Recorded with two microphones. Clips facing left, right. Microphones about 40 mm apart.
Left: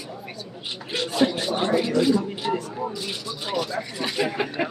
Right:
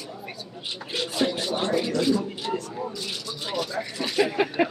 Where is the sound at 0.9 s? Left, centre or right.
Centre.